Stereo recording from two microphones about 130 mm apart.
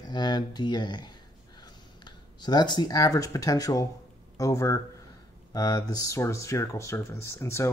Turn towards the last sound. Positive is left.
turn(degrees=20)  # may be behind; listen again after turning